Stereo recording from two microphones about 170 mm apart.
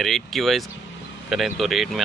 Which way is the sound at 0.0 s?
Centre (ahead or behind).